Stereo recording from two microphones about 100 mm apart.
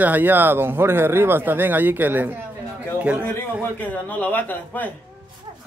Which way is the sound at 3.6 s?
15° left (ahead or behind).